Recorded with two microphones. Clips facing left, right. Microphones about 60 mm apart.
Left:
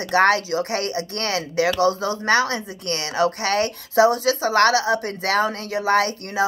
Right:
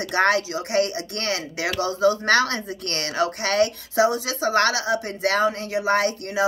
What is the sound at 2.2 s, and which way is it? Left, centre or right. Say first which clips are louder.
Speech: left 1 dB; left.